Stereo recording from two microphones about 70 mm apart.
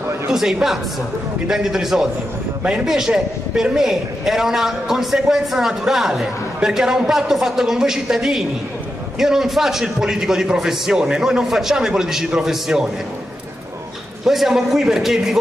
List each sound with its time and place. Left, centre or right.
0.3 s a man's voice: centre
14.2 s a man's voice: centre